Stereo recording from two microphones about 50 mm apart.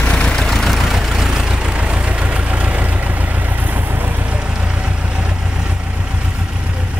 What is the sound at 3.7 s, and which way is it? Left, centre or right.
Vehicle, right.